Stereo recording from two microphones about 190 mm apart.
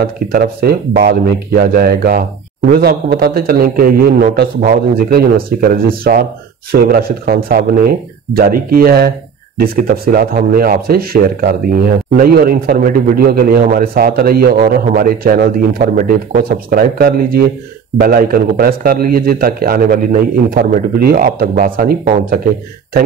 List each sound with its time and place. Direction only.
0.3 s speech: 50° right (ahead or behind)